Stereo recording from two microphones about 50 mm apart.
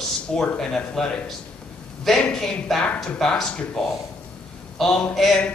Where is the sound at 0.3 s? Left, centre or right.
Centre.